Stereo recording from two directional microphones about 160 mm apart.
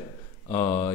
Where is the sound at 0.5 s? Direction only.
45° left (ahead or behind).